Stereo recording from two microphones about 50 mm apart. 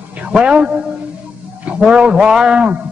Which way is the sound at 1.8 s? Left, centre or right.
Centre.